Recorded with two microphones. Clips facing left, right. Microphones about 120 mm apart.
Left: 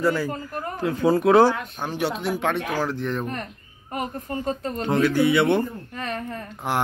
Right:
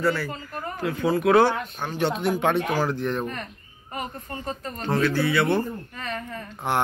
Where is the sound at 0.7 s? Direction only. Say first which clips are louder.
Left 3 dB; 40° left (ahead or behind).